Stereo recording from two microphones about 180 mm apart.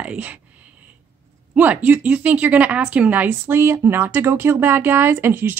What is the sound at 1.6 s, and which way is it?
Speech, 10° right (ahead or behind).